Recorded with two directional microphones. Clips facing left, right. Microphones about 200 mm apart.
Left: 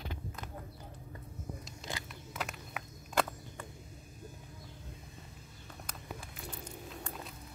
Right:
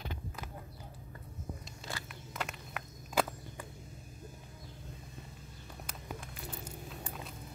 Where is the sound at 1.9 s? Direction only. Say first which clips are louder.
Left 1 dB; 15° left (ahead or behind).